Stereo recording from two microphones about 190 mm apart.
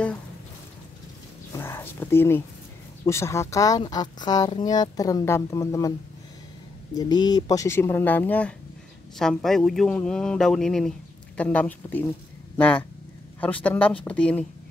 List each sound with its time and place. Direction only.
1.5 s a sound: 15° left (ahead or behind)
3.1 s speech: 15° left (ahead or behind)
7.0 s speech: 20° left (ahead or behind)